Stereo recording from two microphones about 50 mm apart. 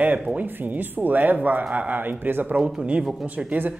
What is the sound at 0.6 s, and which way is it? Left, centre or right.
A woman's voice, right.